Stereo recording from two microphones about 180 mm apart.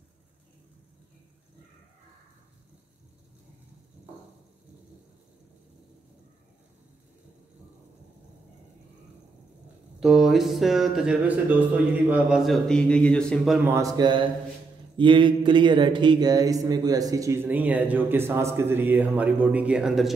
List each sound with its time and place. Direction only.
9.9 s speech: centre (ahead or behind)
13.7 s speech: 20° right (ahead or behind)